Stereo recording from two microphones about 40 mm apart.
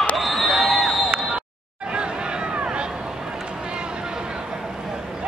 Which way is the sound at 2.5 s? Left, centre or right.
Right.